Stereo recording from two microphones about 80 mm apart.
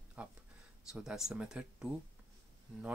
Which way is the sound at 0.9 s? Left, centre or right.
Centre.